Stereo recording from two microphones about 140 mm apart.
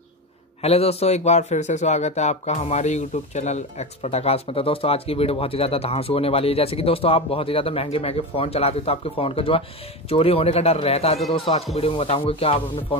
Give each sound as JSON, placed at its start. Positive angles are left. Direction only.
{"t": 0.6, "sound": "a man's voice", "side_deg": 45}